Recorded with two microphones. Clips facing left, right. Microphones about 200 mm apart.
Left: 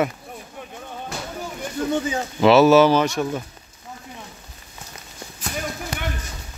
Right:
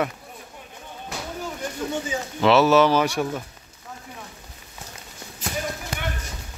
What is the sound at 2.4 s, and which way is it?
Speech, 10° left (ahead or behind).